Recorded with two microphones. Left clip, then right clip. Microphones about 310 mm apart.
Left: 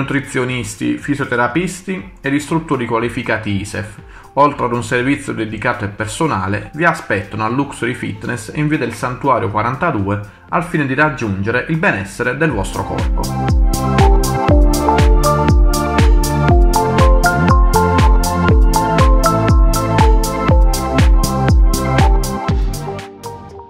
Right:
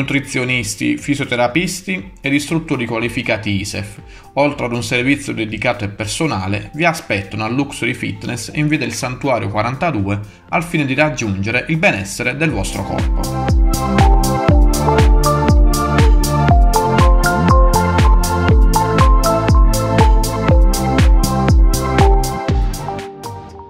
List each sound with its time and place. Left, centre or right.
0.1 s speech: right
12.9 s music: centre